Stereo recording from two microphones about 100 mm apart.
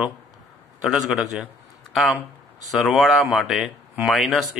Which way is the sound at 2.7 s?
Centre (ahead or behind).